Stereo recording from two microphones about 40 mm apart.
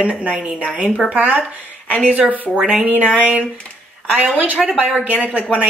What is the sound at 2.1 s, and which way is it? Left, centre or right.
Speech, right.